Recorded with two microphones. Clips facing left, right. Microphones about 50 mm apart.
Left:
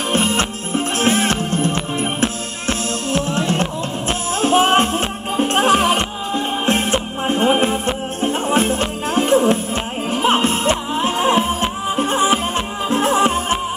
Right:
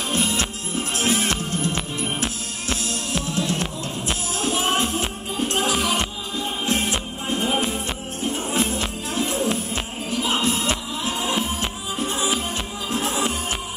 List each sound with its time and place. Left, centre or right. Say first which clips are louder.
0.1 s music: left 6 dB; left